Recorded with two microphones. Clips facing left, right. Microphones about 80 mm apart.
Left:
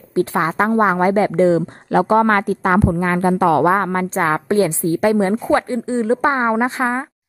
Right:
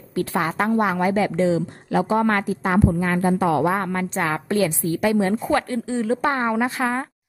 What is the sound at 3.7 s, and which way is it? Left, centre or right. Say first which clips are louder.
A woman's voice: left 6 dB; left.